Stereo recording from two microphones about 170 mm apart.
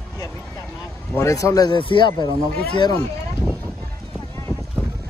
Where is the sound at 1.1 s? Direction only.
15° left (ahead or behind).